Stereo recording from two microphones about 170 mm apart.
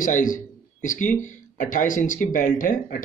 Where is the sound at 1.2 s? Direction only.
50° left (ahead or behind).